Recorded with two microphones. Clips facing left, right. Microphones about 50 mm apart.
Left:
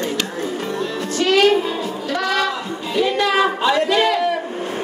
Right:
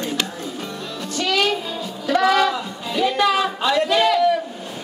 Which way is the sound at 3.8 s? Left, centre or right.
Centre.